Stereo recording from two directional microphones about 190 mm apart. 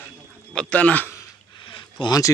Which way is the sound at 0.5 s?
5° left (ahead or behind).